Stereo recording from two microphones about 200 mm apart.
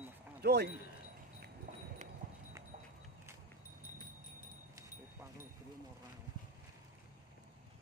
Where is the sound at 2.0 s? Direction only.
35° right (ahead or behind).